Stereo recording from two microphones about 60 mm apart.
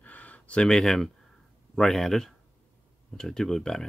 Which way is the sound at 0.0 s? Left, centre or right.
Left.